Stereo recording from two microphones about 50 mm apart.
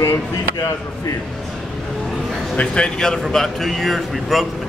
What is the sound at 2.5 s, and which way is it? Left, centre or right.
A man's voice, left.